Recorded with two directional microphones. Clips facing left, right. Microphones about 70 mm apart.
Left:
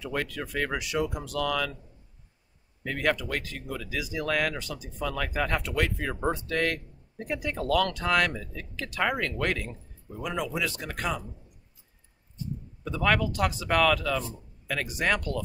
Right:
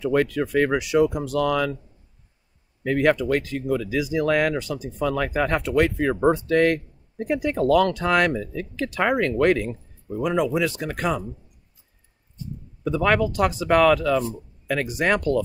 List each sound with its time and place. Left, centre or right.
0.0 s speech: right
2.8 s speech: right
12.8 s speech: right